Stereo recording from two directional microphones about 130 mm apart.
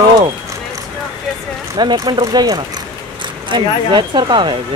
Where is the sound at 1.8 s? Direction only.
35° right (ahead or behind).